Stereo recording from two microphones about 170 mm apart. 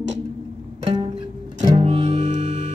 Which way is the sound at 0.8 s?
25° right (ahead or behind).